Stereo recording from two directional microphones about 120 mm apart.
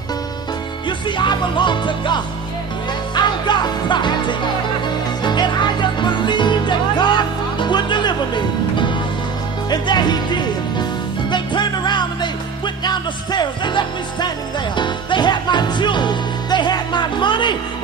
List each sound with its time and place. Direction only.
0.8 s music: 40° left (ahead or behind)